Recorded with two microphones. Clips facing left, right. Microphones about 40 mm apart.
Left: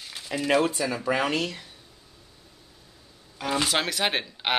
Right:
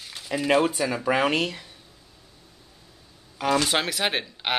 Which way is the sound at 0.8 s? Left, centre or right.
Centre.